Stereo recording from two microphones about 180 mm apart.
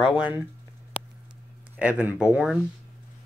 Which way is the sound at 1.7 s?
5° right (ahead or behind).